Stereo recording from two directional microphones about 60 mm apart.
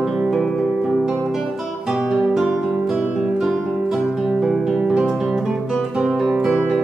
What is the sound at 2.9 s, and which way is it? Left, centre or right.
Music, right.